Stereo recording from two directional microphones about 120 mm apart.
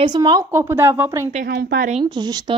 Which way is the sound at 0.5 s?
20° right (ahead or behind).